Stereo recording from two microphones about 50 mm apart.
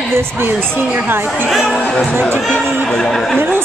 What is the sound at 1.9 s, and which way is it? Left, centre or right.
Speech, centre.